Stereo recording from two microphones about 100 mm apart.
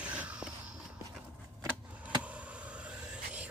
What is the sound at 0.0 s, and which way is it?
Walk, 10° right (ahead or behind).